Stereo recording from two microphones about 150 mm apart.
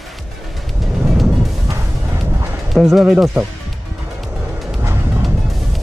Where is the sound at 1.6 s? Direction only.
20° right (ahead or behind).